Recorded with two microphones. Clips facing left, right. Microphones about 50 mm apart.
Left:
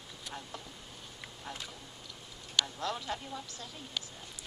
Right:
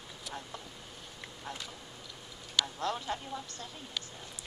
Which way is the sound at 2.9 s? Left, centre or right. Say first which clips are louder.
Right 2 dB; centre.